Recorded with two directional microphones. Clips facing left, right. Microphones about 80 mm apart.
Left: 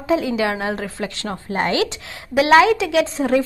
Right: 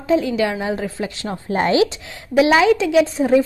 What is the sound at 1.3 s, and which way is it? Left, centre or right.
Speech, left.